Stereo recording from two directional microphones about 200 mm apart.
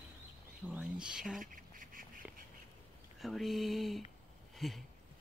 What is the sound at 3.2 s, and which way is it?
Speech, centre (ahead or behind).